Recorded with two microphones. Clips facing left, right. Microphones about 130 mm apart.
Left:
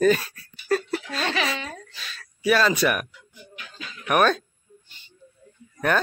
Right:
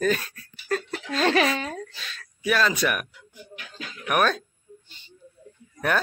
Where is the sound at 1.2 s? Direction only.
40° right (ahead or behind).